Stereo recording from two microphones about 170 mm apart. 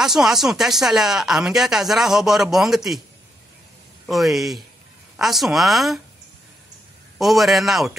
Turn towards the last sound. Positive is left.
turn(degrees=0)  # may be behind; listen again after turning